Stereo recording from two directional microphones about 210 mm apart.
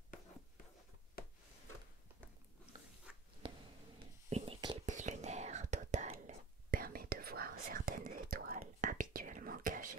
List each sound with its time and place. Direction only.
3.1 s writing: 5° right (ahead or behind)
3.4 s a sound: 25° right (ahead or behind)
4.3 s whispering: 30° right (ahead or behind)